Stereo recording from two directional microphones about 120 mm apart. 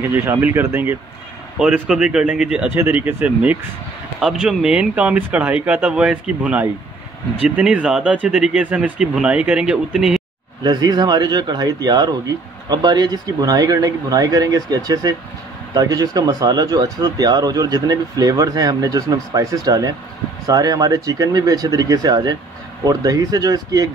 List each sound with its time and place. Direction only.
0.1 s speech: 15° right (ahead or behind)
1.6 s speech: 5° right (ahead or behind)
2.7 s speech: 15° right (ahead or behind)
4.2 s speech: 5° right (ahead or behind)
10.6 s speech: 35° right (ahead or behind)